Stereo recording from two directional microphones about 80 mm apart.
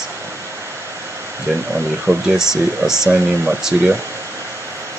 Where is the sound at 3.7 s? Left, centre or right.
Right.